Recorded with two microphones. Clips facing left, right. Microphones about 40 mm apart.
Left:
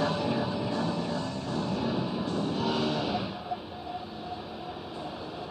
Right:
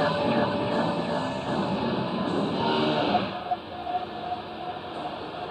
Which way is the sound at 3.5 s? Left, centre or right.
Right.